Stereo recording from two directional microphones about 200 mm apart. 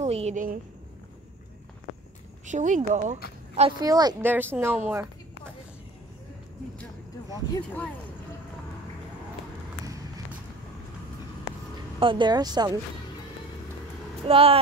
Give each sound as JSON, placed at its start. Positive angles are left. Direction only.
{"t": 0.0, "sound": "a woman's voice", "side_deg": -35}
{"t": 2.4, "sound": "speech", "side_deg": -40}
{"t": 3.8, "sound": "a woman's voice", "side_deg": -20}
{"t": 7.2, "sound": "speech", "side_deg": 15}
{"t": 12.0, "sound": "speech", "side_deg": -25}
{"t": 14.2, "sound": "speech", "side_deg": -30}